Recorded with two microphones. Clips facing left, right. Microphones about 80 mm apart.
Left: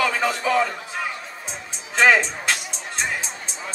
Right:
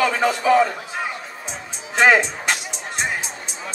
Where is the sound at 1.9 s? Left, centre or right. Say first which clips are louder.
Right 2 dB; right.